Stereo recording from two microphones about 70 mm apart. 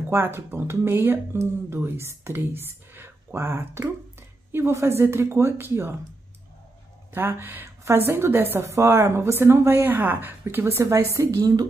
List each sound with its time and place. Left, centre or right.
0.1 s a woman's voice: right
7.2 s speech: right